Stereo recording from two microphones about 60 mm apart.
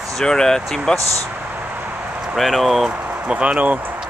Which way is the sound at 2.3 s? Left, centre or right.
Centre.